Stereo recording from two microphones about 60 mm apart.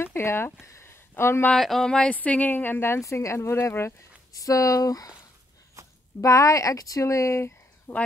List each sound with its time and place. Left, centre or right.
0.0 s a sound: left
1.6 s speech: centre
2.1 s a woman's voice: left
3.0 s speech: left
4.3 s speech: left
5.8 s a sound: right
6.2 s speech: left
7.9 s a woman's voice: left